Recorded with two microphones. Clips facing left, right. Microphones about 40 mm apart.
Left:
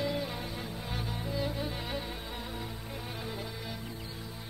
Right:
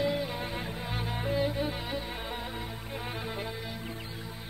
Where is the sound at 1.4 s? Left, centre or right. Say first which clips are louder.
Right 4 dB; right.